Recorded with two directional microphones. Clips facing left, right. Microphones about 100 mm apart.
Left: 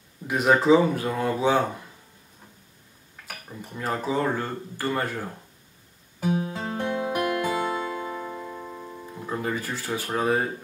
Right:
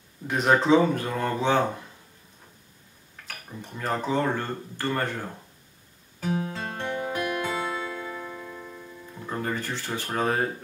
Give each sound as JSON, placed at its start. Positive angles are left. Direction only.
{"t": 0.3, "sound": "speech", "side_deg": 5}
{"t": 3.3, "sound": "speech", "side_deg": 5}
{"t": 6.2, "sound": "music", "side_deg": 20}
{"t": 8.5, "sound": "music", "side_deg": 25}
{"t": 9.2, "sound": "speech", "side_deg": 5}